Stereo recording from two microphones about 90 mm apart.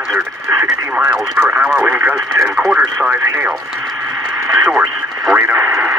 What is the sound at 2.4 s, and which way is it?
Speech, centre (ahead or behind).